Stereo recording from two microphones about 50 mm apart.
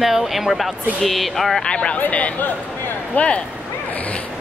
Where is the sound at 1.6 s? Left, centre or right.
Centre.